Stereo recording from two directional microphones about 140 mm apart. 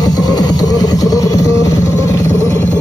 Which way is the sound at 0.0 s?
30° left (ahead or behind).